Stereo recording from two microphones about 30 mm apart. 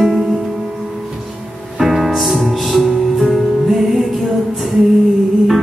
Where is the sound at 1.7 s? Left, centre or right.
Centre.